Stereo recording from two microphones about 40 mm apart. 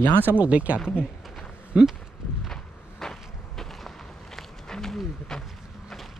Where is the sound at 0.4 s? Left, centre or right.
Right.